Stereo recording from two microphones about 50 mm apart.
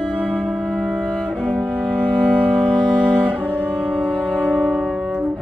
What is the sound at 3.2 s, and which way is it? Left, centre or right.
Cello, right.